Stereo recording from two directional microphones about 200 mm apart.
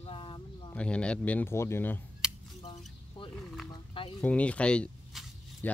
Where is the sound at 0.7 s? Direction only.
5° left (ahead or behind).